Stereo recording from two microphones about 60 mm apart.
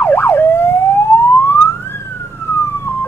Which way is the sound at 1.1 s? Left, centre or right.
Left.